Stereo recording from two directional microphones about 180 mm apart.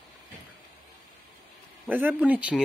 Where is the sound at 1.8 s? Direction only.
10° right (ahead or behind).